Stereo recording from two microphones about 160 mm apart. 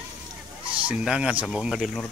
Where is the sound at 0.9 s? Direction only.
5° right (ahead or behind).